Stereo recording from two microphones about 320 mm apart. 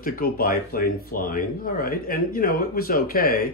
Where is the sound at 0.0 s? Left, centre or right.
Left.